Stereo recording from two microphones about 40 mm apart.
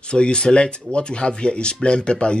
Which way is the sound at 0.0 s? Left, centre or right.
Left.